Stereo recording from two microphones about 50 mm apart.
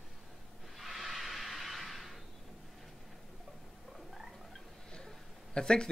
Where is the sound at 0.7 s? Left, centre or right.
Centre.